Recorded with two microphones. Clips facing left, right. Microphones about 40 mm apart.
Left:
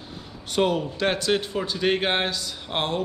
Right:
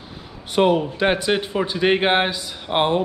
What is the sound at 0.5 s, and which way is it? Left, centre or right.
A man's voice, centre.